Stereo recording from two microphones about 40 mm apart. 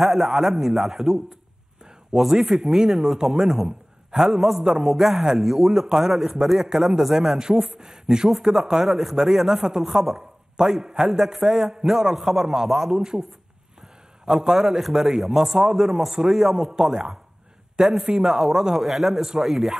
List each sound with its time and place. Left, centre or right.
0.0 s a man's voice: centre
4.6 s a man's voice: centre
4.8 s a man's voice: centre
7.3 s a man's voice: centre
8.8 s a man's voice: centre